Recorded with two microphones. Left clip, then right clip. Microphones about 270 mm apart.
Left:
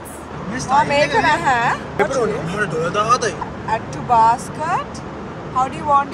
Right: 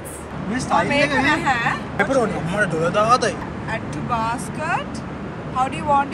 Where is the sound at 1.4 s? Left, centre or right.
Left.